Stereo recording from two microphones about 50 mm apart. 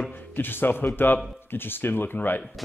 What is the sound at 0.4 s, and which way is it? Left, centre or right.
A man's voice, left.